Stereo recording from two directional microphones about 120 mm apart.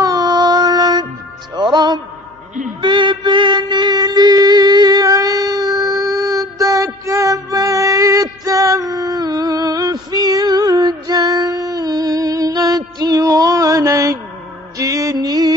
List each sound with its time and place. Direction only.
0.0 s music: 35° right (ahead or behind)